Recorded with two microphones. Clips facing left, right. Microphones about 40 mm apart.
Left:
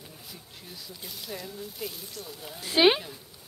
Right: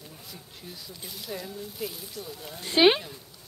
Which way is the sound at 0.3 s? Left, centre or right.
Centre.